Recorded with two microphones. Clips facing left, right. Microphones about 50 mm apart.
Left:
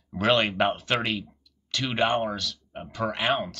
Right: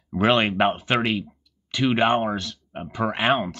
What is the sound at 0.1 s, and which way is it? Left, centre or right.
Speech, centre.